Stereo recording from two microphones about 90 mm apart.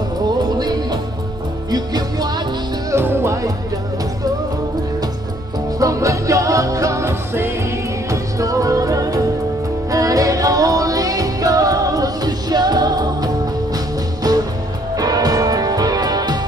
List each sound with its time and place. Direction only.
0.6 s music: 50° right (ahead or behind)
2.9 s music: 30° right (ahead or behind)
5.8 s music: 40° right (ahead or behind)
8.1 s music: 40° right (ahead or behind)